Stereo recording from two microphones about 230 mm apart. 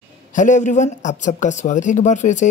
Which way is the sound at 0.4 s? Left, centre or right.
Left.